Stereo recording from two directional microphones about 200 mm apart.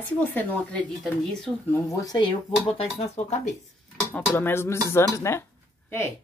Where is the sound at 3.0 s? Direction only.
35° left (ahead or behind).